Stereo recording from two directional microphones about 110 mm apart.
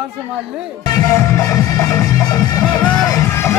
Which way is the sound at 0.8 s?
35° left (ahead or behind).